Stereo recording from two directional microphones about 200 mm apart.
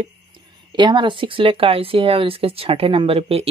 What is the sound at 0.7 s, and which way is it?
Speech, 20° right (ahead or behind).